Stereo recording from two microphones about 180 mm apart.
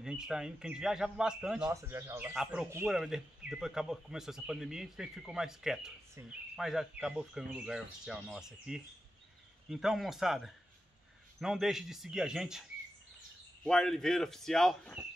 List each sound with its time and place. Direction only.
0.0 s speech: 5° right (ahead or behind)
1.7 s speech: 15° right (ahead or behind)
13.7 s speech: 5° left (ahead or behind)